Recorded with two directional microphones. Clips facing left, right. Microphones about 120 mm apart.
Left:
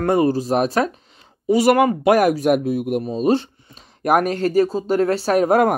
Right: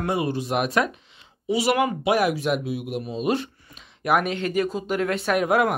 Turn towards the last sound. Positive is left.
turn(degrees=40)  # may be behind; listen again after turning